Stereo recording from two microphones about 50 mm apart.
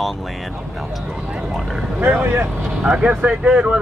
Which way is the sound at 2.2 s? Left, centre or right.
Right.